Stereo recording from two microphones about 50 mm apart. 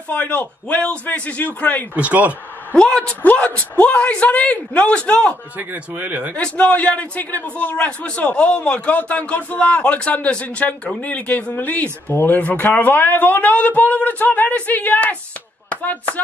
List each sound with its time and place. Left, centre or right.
0.1 s speech: left
2.0 s speech: right
2.7 s speech: centre
3.2 s speech: left
5.6 s speech: right
6.3 s speech: left
7.7 s a man's voice: left